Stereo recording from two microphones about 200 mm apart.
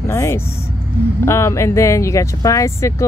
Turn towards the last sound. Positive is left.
turn(degrees=15)  # may be behind; listen again after turning